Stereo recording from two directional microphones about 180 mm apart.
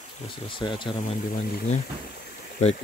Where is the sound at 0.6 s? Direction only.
30° left (ahead or behind).